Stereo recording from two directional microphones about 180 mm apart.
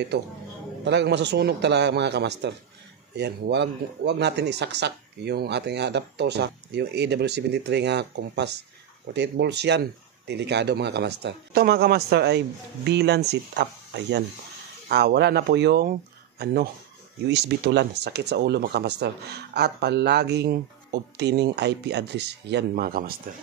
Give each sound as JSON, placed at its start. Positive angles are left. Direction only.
{"t": 0.8, "sound": "speech", "side_deg": -70}
{"t": 17.3, "sound": "speech", "side_deg": -70}